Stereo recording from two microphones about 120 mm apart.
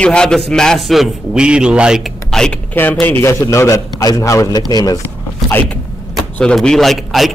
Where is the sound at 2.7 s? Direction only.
15° left (ahead or behind); by 5.0 s 30° left (ahead or behind).